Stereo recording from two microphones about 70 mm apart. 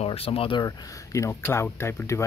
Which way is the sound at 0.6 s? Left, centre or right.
Left.